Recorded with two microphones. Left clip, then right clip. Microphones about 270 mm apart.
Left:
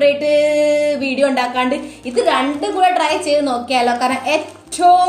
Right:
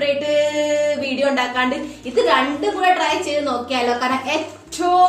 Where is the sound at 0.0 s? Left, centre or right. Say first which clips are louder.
Left 5 dB; left.